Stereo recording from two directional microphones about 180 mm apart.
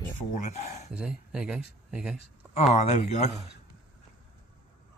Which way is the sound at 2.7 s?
40° left (ahead or behind).